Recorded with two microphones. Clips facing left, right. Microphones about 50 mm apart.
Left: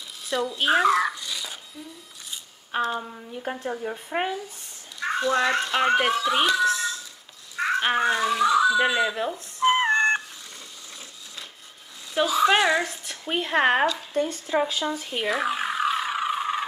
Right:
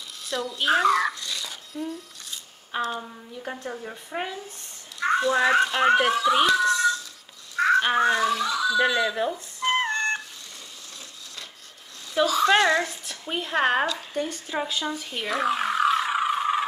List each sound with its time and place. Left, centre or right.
0.2 s a sound: centre
2.8 s speech: centre
4.1 s speech: left
5.0 s a child's voice: centre
7.5 s a sound: centre
8.5 s a child's voice: left
9.1 s speech: centre
9.7 s cat: centre
12.1 s speech: centre
13.3 s speech: left
14.6 s a sound: centre